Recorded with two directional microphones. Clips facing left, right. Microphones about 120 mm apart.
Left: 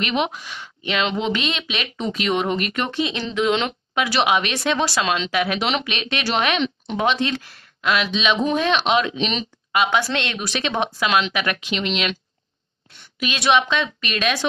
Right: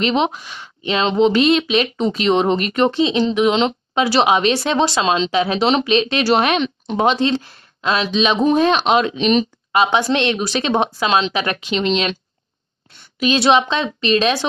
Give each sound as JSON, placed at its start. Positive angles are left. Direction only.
{"t": 0.0, "sound": "speech", "side_deg": -30}
{"t": 9.8, "sound": "speech", "side_deg": -20}
{"t": 13.2, "sound": "speech", "side_deg": -30}